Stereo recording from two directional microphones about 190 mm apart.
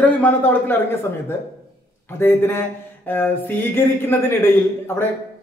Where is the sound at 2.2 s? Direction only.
10° left (ahead or behind).